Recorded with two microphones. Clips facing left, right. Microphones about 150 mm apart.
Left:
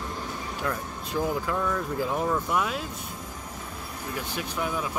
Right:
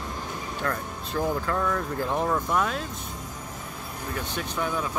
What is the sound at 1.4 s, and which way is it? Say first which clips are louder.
Speech: right 1 dB; 10° left (ahead or behind).